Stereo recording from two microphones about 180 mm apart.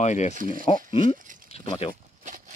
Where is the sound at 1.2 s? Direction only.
45° right (ahead or behind).